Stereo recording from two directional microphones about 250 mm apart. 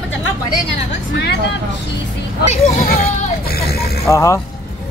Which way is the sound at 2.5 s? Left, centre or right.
Left.